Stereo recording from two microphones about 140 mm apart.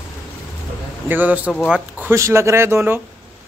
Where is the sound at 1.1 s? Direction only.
10° right (ahead or behind).